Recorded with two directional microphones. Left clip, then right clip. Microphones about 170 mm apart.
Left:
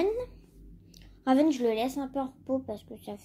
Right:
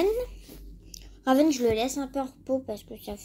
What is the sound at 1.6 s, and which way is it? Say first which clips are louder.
Speech: right 3 dB; 20° right (ahead or behind).